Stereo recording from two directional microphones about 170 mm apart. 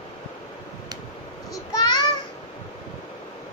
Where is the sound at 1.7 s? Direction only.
25° left (ahead or behind).